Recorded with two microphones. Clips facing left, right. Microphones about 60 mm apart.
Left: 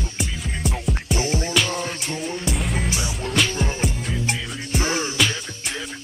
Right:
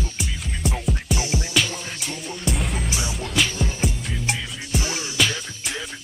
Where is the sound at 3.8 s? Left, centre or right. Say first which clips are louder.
Left 1 dB; centre.